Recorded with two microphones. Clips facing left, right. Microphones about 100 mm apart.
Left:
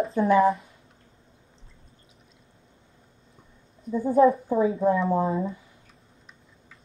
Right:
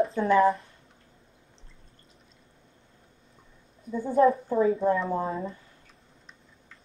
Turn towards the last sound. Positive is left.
turn(degrees=5)  # may be behind; listen again after turning